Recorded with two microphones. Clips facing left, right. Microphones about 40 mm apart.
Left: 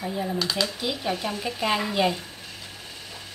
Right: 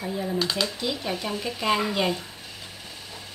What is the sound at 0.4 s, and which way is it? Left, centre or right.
Speech, centre.